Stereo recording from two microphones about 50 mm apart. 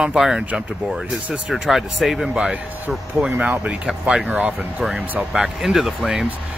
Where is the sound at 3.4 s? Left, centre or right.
Right.